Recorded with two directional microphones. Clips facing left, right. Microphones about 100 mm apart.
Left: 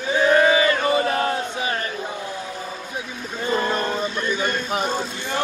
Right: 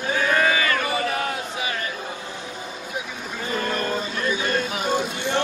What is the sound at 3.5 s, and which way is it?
Vehicle, 30° left (ahead or behind).